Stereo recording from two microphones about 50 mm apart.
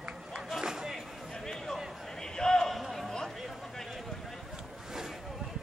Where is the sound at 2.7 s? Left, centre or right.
Centre.